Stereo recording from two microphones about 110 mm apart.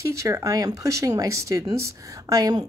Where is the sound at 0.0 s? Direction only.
30° right (ahead or behind).